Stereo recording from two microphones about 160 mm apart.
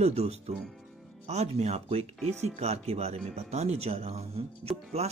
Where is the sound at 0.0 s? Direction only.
40° right (ahead or behind).